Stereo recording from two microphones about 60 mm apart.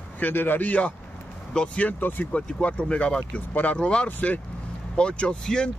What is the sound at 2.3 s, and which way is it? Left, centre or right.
Speech, centre.